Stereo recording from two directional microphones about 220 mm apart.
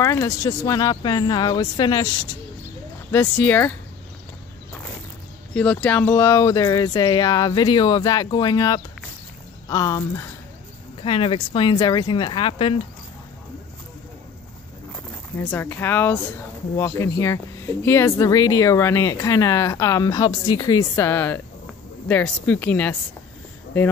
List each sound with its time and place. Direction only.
0.0 s speech: 15° left (ahead or behind)
3.1 s speech: 10° left (ahead or behind)
5.5 s speech: 5° left (ahead or behind); by 12.8 s 25° left (ahead or behind)
15.3 s speech: 10° left (ahead or behind)